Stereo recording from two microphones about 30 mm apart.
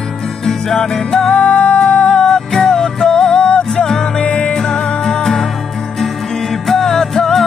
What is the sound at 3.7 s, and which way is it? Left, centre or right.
Music, centre.